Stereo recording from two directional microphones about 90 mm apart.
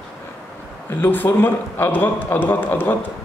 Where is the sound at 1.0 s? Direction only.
20° left (ahead or behind).